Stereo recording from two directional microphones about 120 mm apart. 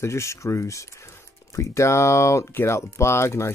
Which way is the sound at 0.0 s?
25° left (ahead or behind).